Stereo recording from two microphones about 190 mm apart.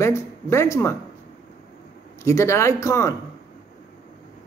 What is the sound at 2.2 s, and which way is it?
Speech, 15° left (ahead or behind).